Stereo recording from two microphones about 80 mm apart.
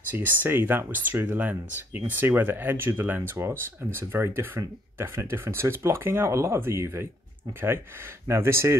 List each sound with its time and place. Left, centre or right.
0.1 s speech: right
8.3 s speech: right